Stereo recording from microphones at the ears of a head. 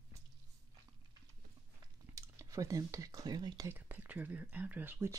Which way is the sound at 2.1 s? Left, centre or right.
Right.